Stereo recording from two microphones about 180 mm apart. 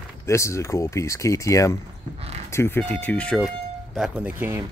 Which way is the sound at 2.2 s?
35° right (ahead or behind).